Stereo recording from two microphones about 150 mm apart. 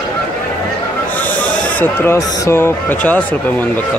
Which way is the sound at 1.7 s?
15° left (ahead or behind).